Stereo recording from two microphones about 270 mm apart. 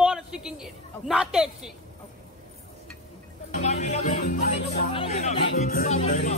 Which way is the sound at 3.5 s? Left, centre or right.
Left.